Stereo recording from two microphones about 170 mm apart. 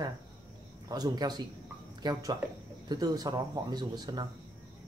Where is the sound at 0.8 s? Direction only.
25° right (ahead or behind).